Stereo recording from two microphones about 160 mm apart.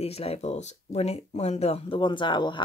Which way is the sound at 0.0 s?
40° left (ahead or behind).